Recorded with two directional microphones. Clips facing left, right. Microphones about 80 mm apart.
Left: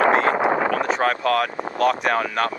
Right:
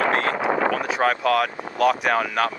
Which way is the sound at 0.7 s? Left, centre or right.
Centre.